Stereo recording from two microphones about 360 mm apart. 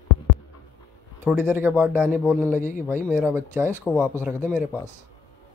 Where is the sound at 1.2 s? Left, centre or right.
Centre.